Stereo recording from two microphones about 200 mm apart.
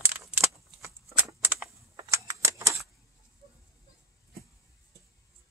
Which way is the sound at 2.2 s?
15° right (ahead or behind).